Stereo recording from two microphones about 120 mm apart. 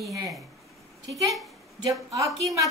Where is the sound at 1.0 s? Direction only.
30° right (ahead or behind).